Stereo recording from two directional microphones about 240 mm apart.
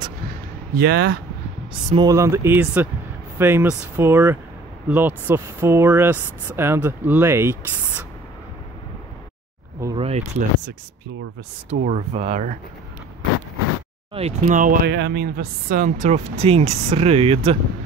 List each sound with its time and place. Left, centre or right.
0.7 s speech: right
1.7 s speech: right
9.8 s a sound: centre
10.0 s speech: right
11.7 s speech: right
14.1 s speech: right